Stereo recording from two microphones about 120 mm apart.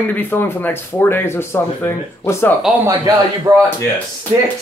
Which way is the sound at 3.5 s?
30° right (ahead or behind).